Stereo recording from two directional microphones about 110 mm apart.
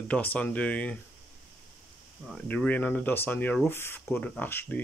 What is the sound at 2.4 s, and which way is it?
Speech, 10° left (ahead or behind).